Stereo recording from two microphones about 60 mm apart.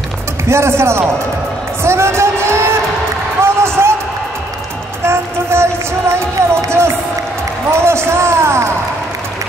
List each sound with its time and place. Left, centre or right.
0.5 s speech: right
3.4 s a sound: right
5.0 s speech: right